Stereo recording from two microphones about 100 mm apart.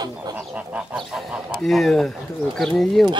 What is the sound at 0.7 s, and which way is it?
Goose, 5° right (ahead or behind).